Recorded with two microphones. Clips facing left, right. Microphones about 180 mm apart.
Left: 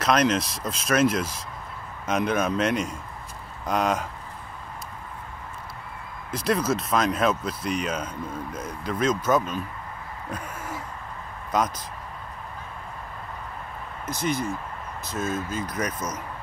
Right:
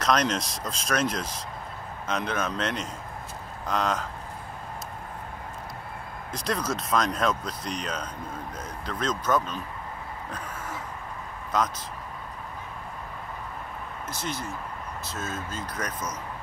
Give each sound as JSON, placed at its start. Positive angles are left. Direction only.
{"t": 0.0, "sound": "speech", "side_deg": 5}
{"t": 6.3, "sound": "speech", "side_deg": 5}
{"t": 11.5, "sound": "speech", "side_deg": 10}
{"t": 14.0, "sound": "speech", "side_deg": 15}